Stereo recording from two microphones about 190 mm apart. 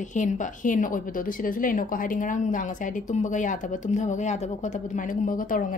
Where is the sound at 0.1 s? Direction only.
40° left (ahead or behind).